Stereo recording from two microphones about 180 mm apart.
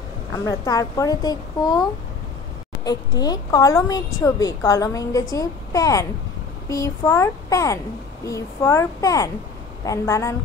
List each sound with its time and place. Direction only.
0.3 s speech: 20° left (ahead or behind)
2.8 s speech: 20° left (ahead or behind)